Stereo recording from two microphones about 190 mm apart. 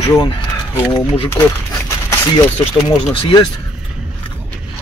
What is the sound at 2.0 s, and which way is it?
Speech, 20° left (ahead or behind).